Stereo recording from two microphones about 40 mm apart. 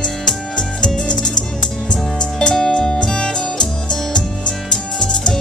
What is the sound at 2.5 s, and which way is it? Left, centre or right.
Music, centre.